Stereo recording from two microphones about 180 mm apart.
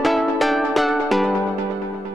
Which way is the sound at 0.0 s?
Centre (ahead or behind).